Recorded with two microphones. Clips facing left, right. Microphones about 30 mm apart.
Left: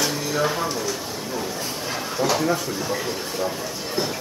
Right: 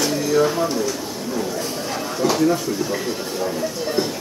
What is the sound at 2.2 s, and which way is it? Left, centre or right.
Speech, centre.